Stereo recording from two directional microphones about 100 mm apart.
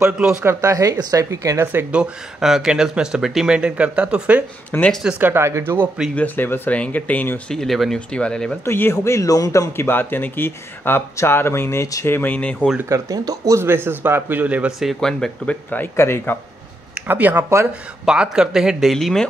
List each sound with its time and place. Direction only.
0.0 s speech: 5° right (ahead or behind)
0.6 s speech: 35° right (ahead or behind)
1.9 s speech: 5° right (ahead or behind)
4.7 s speech: 20° left (ahead or behind)
5.2 s speech: 25° right (ahead or behind)
6.1 s speech: 20° left (ahead or behind)
7.5 s speech: centre (ahead or behind)
8.6 s speech: 20° left (ahead or behind)
12.7 s speech: 30° right (ahead or behind); by 14.7 s 15° right (ahead or behind)
14.8 s speech: centre (ahead or behind)
15.7 s speech: 25° left (ahead or behind)
16.9 s speech: 15° right (ahead or behind); by 19.2 s centre (ahead or behind)